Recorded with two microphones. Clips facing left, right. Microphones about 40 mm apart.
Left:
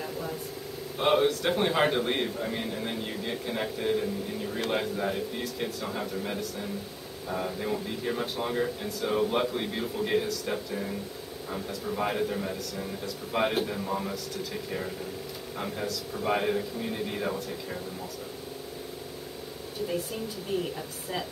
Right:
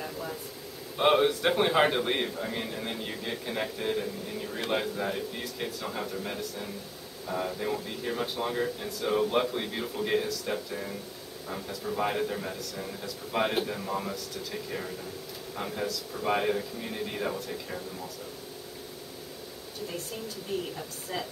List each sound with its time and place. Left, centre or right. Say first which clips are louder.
0.9 s a man's voice: right 1 dB; centre
15.5 s speech: even; centre
20.5 s speech: left 3 dB; centre